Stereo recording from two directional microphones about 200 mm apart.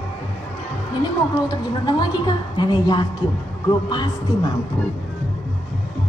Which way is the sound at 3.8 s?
20° left (ahead or behind).